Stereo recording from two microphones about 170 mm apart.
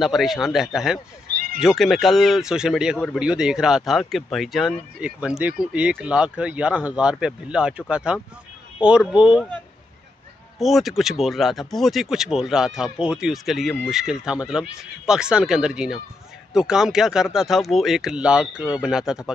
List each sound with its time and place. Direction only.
0.0 s speech: centre (ahead or behind)
1.3 s cat: 60° right (ahead or behind)
1.6 s speech: centre (ahead or behind)
10.6 s speech: centre (ahead or behind)